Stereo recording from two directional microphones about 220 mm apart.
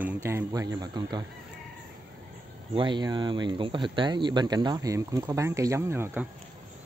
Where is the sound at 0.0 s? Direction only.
10° right (ahead or behind).